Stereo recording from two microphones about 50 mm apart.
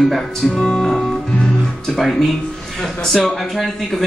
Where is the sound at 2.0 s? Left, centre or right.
Centre.